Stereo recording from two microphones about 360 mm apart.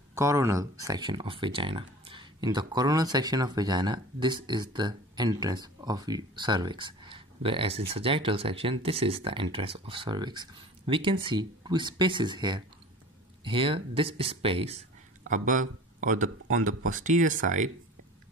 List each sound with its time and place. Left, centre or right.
0.1 s speech: centre